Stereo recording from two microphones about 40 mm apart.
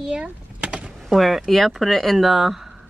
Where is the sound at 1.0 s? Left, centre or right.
Centre.